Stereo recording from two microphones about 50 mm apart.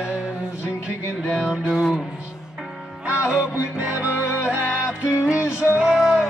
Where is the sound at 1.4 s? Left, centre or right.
Centre.